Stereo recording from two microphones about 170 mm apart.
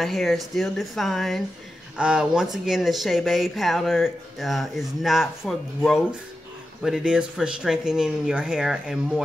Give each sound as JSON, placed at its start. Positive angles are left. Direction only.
{"t": 0.0, "sound": "speech", "side_deg": 0}